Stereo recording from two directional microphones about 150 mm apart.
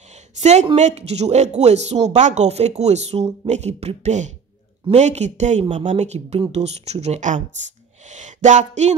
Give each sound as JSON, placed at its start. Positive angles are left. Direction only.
{"t": 0.4, "sound": "speech", "side_deg": -50}